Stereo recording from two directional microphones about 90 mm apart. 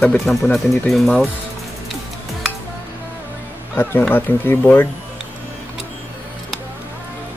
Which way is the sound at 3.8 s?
20° left (ahead or behind).